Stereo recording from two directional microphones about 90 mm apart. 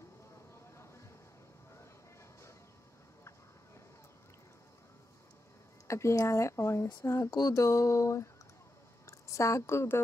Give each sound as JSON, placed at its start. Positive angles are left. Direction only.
{"t": 5.9, "sound": "speech", "side_deg": 35}
{"t": 7.2, "sound": "a woman's voice", "side_deg": 45}